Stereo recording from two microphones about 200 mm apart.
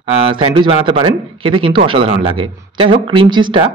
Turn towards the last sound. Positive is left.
turn(degrees=-25)  # may be behind; listen again after turning